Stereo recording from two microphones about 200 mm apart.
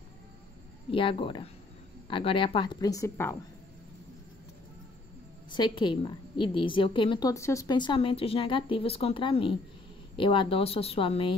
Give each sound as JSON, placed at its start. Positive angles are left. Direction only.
{"t": 0.9, "sound": "a woman's voice", "side_deg": 25}
{"t": 5.5, "sound": "a woman's voice", "side_deg": 25}